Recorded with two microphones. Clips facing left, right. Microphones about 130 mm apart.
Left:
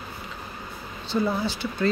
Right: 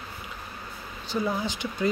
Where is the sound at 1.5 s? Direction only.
15° right (ahead or behind).